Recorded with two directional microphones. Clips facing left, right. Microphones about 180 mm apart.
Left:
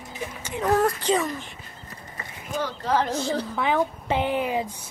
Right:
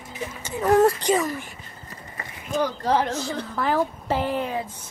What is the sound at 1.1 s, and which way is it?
Speech, 5° right (ahead or behind).